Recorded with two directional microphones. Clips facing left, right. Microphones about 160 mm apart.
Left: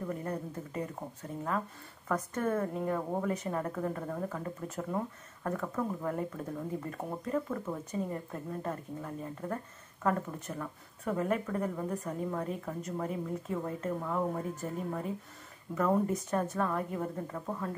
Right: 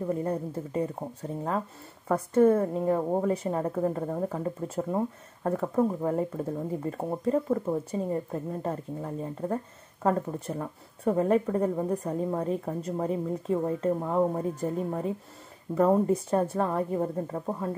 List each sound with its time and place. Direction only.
0.0 s a woman's voice: 25° right (ahead or behind)
2.0 s a woman's voice: 30° right (ahead or behind)